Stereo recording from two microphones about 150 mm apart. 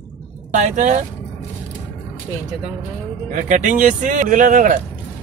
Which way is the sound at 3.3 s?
55° right (ahead or behind).